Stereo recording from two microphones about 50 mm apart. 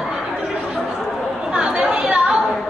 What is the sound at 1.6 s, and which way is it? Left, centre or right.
Chatter, right.